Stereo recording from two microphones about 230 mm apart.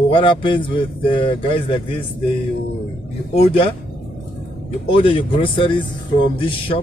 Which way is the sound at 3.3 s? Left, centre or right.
Left.